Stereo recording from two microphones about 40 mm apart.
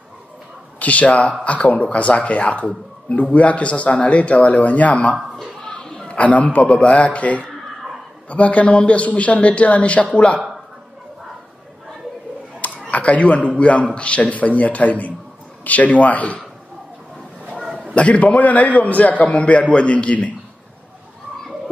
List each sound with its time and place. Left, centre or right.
0.7 s a man's voice: left
5.2 s a sound: centre
5.7 s a sound: left
6.1 s a man's voice: left
12.9 s a man's voice: left
17.9 s a man's voice: left